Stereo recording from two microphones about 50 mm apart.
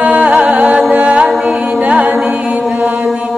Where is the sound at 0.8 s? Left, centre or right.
Right.